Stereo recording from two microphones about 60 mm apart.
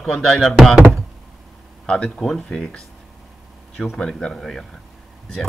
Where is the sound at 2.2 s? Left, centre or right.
Centre.